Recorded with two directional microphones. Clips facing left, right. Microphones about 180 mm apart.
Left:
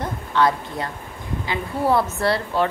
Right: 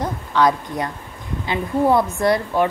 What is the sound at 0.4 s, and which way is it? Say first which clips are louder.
A woman's voice: right 2 dB; 20° right (ahead or behind).